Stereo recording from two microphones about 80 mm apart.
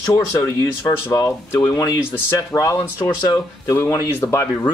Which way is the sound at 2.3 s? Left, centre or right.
Left.